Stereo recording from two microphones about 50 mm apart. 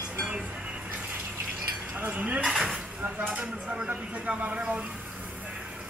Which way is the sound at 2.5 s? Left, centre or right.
Centre.